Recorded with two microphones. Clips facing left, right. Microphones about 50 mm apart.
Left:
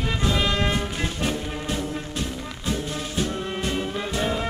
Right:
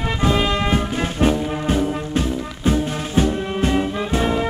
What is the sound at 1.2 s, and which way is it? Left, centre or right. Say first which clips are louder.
Music: right 12 dB; right.